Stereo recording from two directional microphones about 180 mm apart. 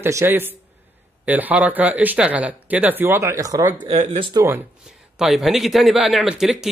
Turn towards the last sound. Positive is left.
turn(degrees=0)  # may be behind; listen again after turning